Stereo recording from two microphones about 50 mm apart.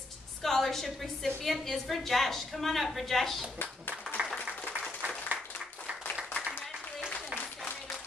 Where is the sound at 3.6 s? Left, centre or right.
Left.